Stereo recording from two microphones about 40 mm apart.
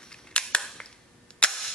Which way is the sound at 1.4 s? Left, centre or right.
Left.